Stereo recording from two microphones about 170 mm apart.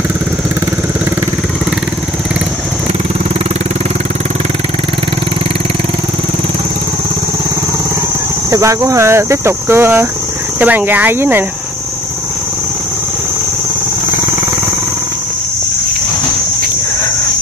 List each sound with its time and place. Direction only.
8.5 s speech: 20° right (ahead or behind)